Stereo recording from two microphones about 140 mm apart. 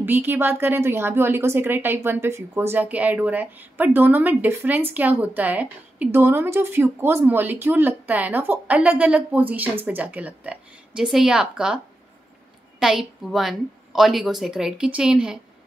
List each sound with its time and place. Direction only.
0.0 s a woman's voice: 15° right (ahead or behind)